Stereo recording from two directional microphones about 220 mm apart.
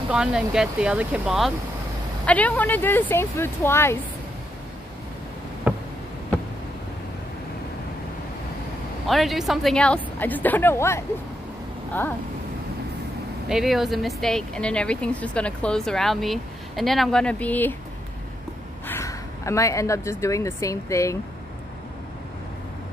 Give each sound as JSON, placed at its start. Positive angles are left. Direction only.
{"t": 0.1, "sound": "a woman's voice", "side_deg": -5}
{"t": 5.7, "sound": "a sound", "side_deg": -5}
{"t": 9.0, "sound": "a woman's voice", "side_deg": 0}
{"t": 13.5, "sound": "speech", "side_deg": 0}
{"t": 18.9, "sound": "speech", "side_deg": 15}